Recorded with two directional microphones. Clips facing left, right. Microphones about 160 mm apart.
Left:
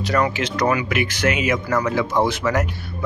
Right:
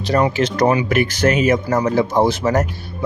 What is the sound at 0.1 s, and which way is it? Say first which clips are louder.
Speech: right 5 dB; 30° right (ahead or behind).